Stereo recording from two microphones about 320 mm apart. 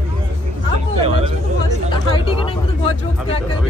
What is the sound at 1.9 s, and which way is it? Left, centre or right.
Speech, centre.